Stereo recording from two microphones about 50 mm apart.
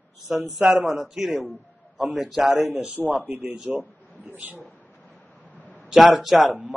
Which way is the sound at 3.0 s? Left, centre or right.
Right.